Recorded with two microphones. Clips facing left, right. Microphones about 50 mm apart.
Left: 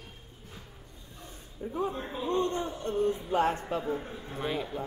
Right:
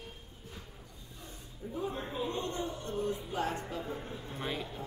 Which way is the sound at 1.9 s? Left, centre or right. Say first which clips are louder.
Left 2 dB; centre.